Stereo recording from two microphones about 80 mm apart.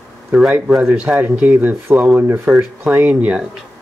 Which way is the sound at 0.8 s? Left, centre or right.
Centre.